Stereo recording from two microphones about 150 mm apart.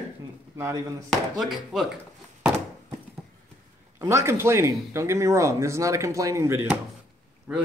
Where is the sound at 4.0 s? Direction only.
20° right (ahead or behind).